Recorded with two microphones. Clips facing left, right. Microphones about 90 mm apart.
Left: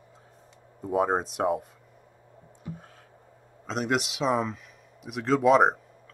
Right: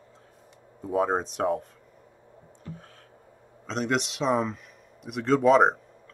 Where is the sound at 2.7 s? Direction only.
15° left (ahead or behind).